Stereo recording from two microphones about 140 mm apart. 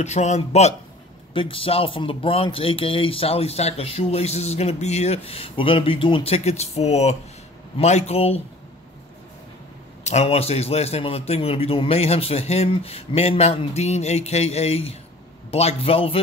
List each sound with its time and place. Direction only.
0.0 s speech: 55° left (ahead or behind)
1.3 s speech: 40° left (ahead or behind)
10.0 s speech: 50° left (ahead or behind)